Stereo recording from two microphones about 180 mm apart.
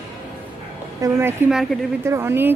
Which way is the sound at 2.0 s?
15° right (ahead or behind).